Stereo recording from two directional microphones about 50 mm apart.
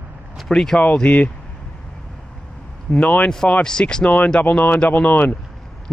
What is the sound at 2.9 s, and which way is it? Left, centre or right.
Speech, left.